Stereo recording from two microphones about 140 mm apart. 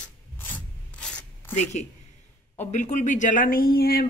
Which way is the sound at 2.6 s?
60° left (ahead or behind).